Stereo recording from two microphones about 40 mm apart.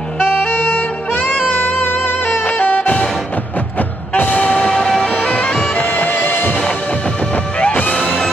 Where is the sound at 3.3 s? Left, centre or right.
Left.